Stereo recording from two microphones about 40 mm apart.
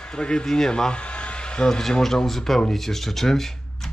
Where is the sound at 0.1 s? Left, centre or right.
Left.